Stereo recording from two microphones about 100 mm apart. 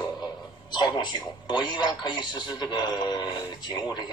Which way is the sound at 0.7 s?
45° left (ahead or behind).